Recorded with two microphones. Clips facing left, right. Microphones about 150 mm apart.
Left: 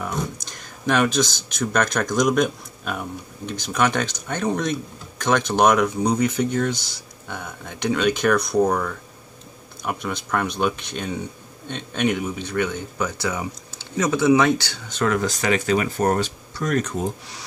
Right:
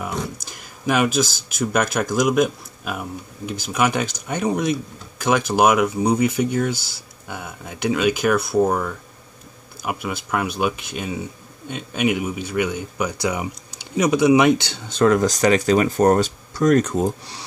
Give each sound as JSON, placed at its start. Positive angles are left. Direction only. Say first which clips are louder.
{"t": 0.0, "sound": "speech", "louder": "even", "side_deg": -10}
{"t": 14.9, "sound": "speech", "louder": "right 6 dB", "side_deg": -35}